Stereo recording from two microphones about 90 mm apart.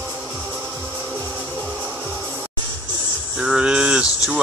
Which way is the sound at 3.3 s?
5° right (ahead or behind).